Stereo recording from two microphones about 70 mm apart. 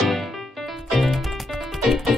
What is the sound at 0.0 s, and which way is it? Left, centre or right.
Music, centre.